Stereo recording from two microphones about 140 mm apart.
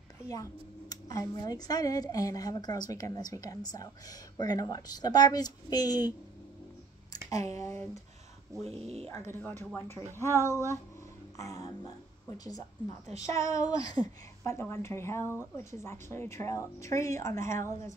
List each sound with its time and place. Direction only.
0.3 s speech: 25° left (ahead or behind)
7.2 s speech: 25° left (ahead or behind)
8.6 s speech: 50° right (ahead or behind)
9.3 s speech: 15° left (ahead or behind)